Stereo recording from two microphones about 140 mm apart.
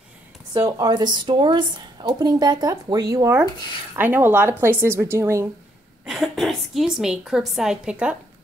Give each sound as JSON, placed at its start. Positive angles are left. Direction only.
{"t": 0.5, "sound": "a woman's voice", "side_deg": -25}
{"t": 3.9, "sound": "speech", "side_deg": -15}
{"t": 6.0, "sound": "a woman's voice", "side_deg": 0}